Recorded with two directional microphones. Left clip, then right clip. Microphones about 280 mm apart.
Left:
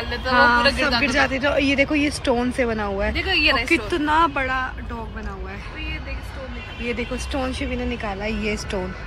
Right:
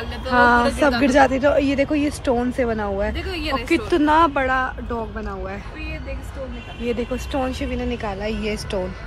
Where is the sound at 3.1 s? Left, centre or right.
Left.